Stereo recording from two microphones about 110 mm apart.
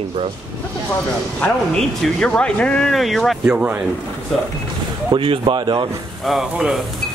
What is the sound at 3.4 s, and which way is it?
Speech, 10° right (ahead or behind).